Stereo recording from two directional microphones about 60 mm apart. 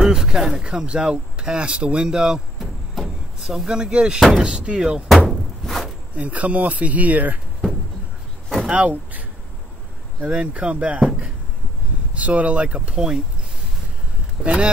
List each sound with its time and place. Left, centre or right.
0.0 s speech: centre
2.6 s a sound: centre
3.5 s speech: centre
5.6 s a sound: centre
6.1 s speech: right
8.6 s speech: right
10.3 s speech: centre
14.4 s speech: centre